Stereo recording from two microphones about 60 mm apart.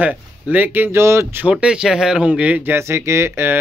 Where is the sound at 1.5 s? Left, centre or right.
Centre.